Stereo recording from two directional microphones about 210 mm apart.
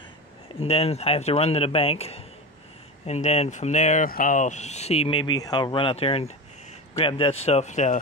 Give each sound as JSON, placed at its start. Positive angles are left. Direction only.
{"t": 0.6, "sound": "speech", "side_deg": 30}